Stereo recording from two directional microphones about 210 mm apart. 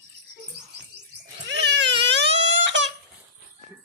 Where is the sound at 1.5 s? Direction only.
55° right (ahead or behind).